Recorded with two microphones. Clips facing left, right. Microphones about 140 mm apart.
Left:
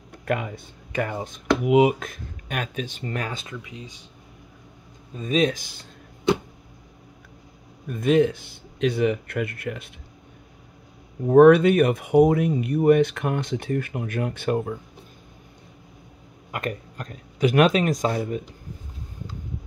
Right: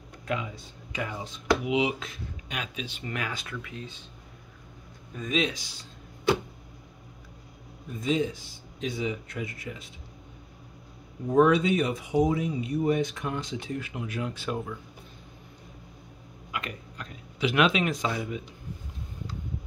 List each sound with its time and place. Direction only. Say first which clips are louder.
0.2 s speech: left 6 dB; 60° left (ahead or behind)
3.0 s speech: left 4 dB; 35° left (ahead or behind)
3.5 s speech: left 1 dB; 15° left (ahead or behind)
5.1 s speech: left 5 dB; 30° left (ahead or behind)
5.4 s speech: left 8 dB; 50° left (ahead or behind)
7.9 s speech: left 8 dB; 65° left (ahead or behind)
11.2 s speech: left 8 dB; 60° left (ahead or behind)
16.5 s speech: left 7 dB; 45° left (ahead or behind)